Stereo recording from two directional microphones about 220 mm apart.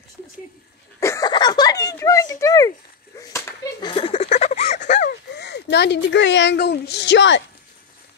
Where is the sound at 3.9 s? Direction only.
25° left (ahead or behind).